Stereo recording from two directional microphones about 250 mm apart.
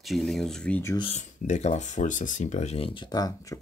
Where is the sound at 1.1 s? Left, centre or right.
Left.